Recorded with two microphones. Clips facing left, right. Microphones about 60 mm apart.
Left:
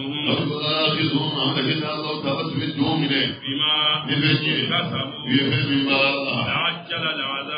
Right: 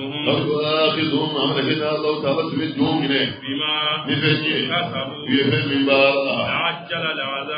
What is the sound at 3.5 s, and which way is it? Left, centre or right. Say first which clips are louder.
Mantra: left 1 dB; right.